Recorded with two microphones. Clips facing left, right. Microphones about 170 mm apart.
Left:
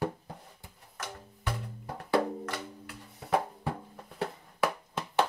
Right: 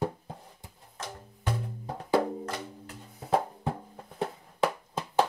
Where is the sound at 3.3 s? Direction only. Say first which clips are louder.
Right 2 dB; 25° right (ahead or behind).